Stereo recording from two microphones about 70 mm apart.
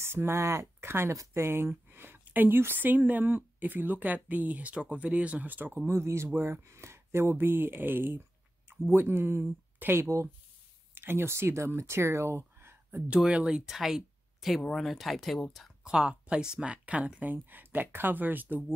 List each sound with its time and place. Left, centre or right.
0.0 s speech: right
5.9 s speech: right
13.3 s speech: centre
15.8 s speech: centre; by 18.6 s right